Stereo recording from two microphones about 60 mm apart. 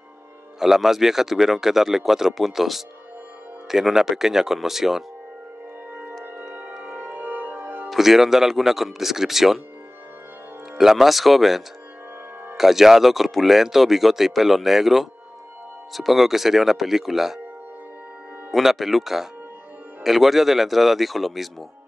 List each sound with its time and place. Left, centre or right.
0.6 s speech: centre
6.8 s music: right
7.9 s speech: centre
10.8 s speech: centre
18.5 s speech: centre